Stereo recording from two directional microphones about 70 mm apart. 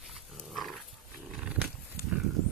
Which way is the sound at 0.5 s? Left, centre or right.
Centre.